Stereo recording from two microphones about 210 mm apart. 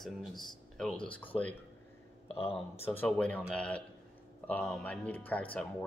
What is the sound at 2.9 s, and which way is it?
Speech, 5° left (ahead or behind).